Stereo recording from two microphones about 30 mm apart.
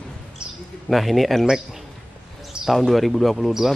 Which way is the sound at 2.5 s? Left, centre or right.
Right.